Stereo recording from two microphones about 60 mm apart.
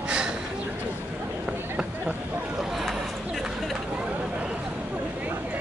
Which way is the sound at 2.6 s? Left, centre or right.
Centre.